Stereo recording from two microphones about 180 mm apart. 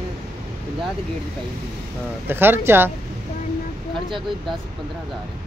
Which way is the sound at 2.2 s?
10° right (ahead or behind).